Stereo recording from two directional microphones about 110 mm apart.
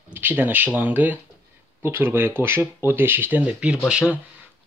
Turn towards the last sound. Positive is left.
turn(degrees=-10)  # may be behind; listen again after turning